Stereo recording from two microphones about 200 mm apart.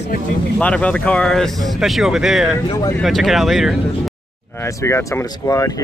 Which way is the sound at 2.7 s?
20° left (ahead or behind).